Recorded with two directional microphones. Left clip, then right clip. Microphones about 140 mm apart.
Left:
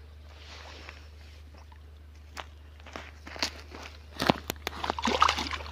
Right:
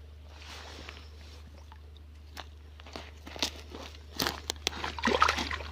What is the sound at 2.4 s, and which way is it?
Crunch, 75° right (ahead or behind).